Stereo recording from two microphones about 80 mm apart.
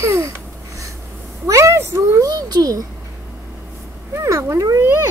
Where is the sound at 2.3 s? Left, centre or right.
Right.